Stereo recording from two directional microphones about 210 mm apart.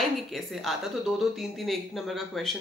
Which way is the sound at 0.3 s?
Centre (ahead or behind).